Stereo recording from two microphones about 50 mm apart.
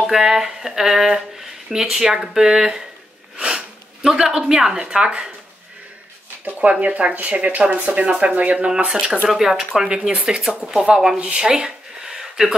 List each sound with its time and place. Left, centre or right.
0.0 s speech: centre
3.3 s a sound: centre
4.4 s speech: centre
6.7 s speech: right
9.3 s speech: centre
9.8 s speech: centre
11.1 s a sound: centre